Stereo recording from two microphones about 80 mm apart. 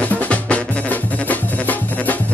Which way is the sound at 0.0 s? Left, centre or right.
Centre.